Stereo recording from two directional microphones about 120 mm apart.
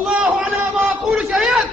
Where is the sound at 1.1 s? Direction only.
5° right (ahead or behind).